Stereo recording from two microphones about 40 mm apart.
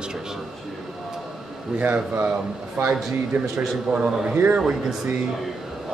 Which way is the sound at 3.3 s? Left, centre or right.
Right.